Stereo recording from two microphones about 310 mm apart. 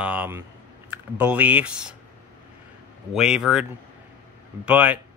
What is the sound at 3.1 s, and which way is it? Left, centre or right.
Speech, centre.